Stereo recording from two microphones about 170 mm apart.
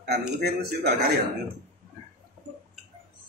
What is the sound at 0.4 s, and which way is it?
Speech, 70° right (ahead or behind).